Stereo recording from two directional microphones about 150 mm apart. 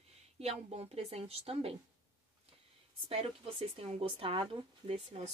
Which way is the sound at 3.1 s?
40° right (ahead or behind).